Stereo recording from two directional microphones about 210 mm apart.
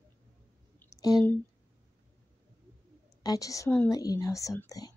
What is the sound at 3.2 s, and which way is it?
Speech, 15° left (ahead or behind).